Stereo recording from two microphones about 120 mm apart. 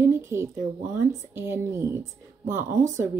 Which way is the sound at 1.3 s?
20° right (ahead or behind).